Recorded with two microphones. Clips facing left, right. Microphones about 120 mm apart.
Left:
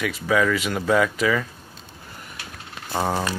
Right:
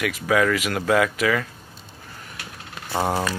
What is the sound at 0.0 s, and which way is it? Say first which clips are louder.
Speech: right 1 dB; 5° right (ahead or behind).